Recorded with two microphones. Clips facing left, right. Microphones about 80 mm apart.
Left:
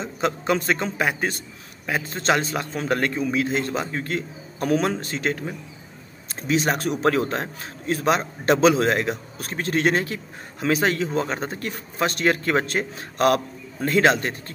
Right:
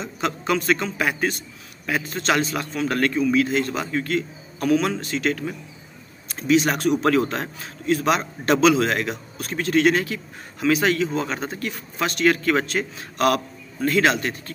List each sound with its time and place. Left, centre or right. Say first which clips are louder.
0.0 s a man's voice: left 1 dB; left